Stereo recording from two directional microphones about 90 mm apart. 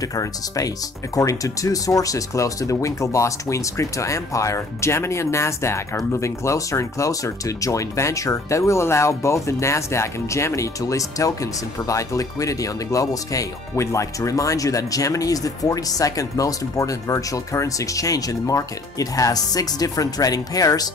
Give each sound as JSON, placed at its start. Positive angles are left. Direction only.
{"t": 0.0, "sound": "speech", "side_deg": 40}